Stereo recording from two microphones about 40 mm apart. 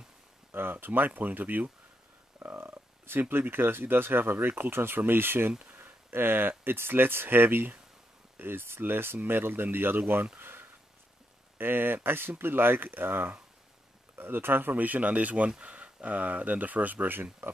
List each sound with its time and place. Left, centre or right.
0.5 s speech: right
2.5 s speech: right
5.8 s a sound: right
6.6 s speech: right
10.4 s a sound: right
11.5 s speech: right